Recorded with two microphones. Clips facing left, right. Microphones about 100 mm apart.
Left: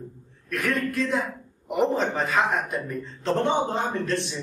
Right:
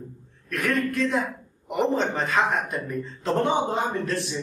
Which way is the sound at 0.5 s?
Centre (ahead or behind).